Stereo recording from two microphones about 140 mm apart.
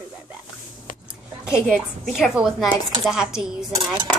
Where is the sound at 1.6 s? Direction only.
5° left (ahead or behind).